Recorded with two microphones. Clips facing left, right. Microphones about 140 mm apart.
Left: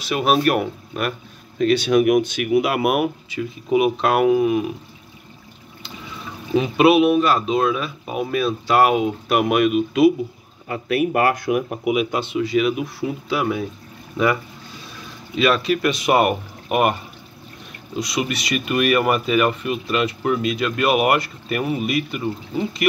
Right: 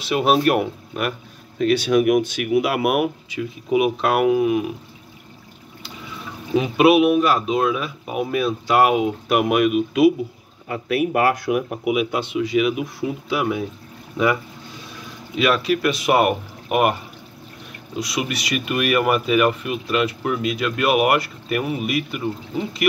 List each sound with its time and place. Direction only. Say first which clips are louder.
0.0 s speech: right 1 dB; 25° right (ahead or behind)
1.6 s speech: left 1 dB; 5° right (ahead or behind)
6.5 s speech: even; 10° right (ahead or behind)
17.9 s speech: left 1 dB; 10° right (ahead or behind)